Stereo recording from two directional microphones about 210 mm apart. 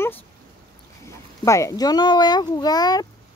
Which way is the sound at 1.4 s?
15° left (ahead or behind).